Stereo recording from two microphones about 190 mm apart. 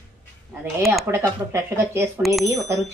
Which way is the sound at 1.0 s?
15° right (ahead or behind).